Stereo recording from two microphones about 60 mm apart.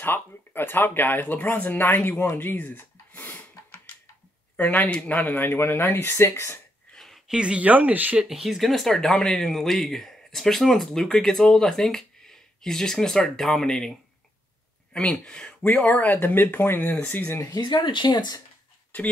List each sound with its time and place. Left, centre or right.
0.0 s speech: left
3.2 s a sound: left
4.6 s speech: left
6.9 s a sound: centre
7.2 s speech: centre
8.2 s speech: centre; by 16.9 s left
18.9 s speech: left